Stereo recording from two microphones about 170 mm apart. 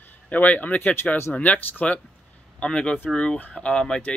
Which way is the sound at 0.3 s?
10° left (ahead or behind).